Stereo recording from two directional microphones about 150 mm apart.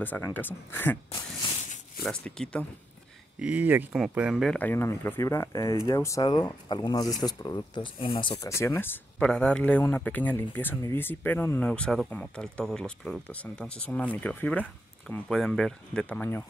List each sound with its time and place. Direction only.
0.0 s speech: 10° left (ahead or behind)
2.0 s speech: 5° left (ahead or behind)
3.3 s speech: 10° right (ahead or behind)
4.6 s speech: 15° left (ahead or behind); by 8.4 s 35° left (ahead or behind)
8.4 s speech: 20° left (ahead or behind)